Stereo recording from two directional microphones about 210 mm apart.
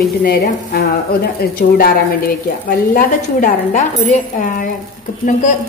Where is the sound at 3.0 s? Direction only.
40° left (ahead or behind).